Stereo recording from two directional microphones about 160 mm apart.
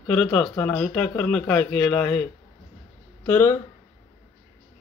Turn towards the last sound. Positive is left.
turn(degrees=15)  # may be behind; listen again after turning